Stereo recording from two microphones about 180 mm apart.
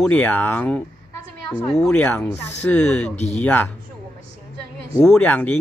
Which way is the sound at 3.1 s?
40° left (ahead or behind).